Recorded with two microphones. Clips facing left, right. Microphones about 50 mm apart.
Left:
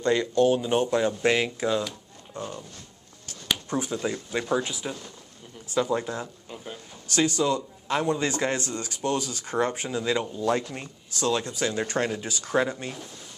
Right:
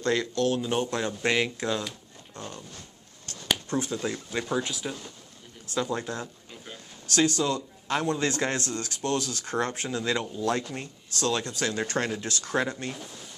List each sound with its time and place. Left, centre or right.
0.0 s speech: centre
3.6 s speech: centre